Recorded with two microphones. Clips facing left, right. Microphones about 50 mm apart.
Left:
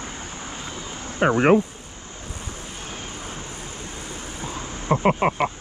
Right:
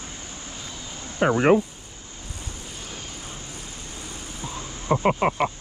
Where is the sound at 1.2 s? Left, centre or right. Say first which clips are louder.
Left 1 dB; left.